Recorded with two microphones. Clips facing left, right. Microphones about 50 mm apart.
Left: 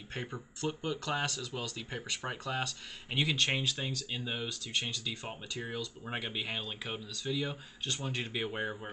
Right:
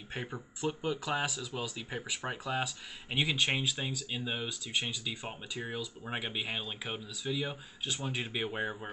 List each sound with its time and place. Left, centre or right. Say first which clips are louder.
0.1 s speech: right 1 dB; centre